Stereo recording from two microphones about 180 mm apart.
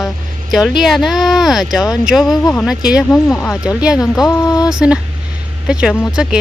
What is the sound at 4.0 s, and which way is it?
Speech, 20° left (ahead or behind).